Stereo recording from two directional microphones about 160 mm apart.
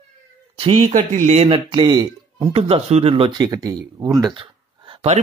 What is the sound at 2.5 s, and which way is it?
Speech, 40° right (ahead or behind).